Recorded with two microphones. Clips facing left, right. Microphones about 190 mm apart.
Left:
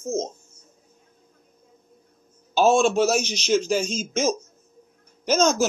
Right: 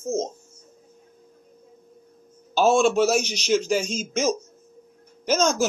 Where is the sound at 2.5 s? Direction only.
10° right (ahead or behind).